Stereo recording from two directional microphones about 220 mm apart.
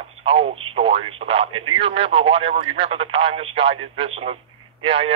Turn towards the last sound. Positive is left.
turn(degrees=-25)  # may be behind; listen again after turning